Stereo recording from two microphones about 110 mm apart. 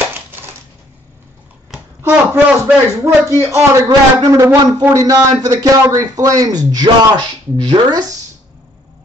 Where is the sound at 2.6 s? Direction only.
25° right (ahead or behind).